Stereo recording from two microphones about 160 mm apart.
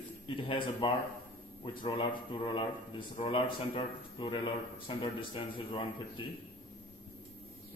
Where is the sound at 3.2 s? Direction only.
30° left (ahead or behind).